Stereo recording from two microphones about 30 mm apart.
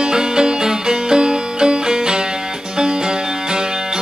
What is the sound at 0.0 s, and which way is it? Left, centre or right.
Music, right.